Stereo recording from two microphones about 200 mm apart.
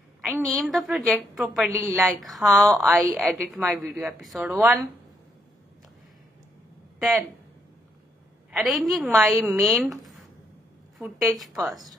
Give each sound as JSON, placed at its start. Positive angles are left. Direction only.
{"t": 0.3, "sound": "a woman's voice", "side_deg": 0}
{"t": 7.0, "sound": "speech", "side_deg": 0}
{"t": 8.5, "sound": "a woman's voice", "side_deg": 0}
{"t": 11.3, "sound": "a woman's voice", "side_deg": 0}